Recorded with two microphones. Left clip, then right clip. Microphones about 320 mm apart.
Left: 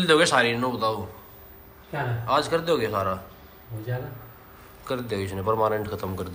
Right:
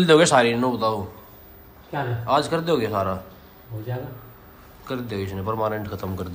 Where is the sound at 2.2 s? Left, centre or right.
Centre.